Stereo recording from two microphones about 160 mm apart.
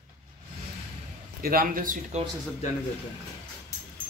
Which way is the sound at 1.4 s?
65° right (ahead or behind).